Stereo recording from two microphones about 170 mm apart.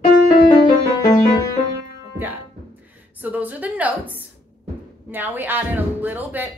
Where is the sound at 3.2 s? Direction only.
10° right (ahead or behind).